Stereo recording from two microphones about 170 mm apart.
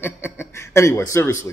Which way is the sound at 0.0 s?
15° left (ahead or behind).